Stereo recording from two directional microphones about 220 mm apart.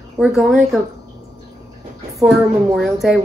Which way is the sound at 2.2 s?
Centre (ahead or behind).